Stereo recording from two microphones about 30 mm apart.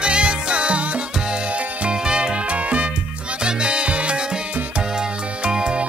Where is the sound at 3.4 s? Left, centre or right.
Right.